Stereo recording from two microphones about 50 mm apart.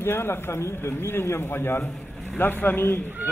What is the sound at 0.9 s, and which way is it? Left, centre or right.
A man's voice, left.